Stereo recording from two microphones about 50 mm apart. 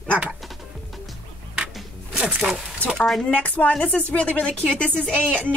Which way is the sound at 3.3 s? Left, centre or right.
Left.